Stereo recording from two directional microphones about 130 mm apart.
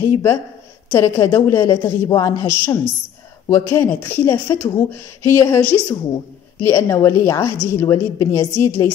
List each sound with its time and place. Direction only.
0.0 s speech: 20° left (ahead or behind)